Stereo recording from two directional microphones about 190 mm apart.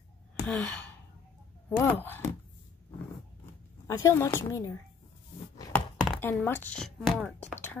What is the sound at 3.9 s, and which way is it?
Speech, 15° left (ahead or behind).